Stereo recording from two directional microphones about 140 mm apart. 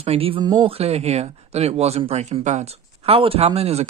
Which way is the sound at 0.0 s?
45° right (ahead or behind).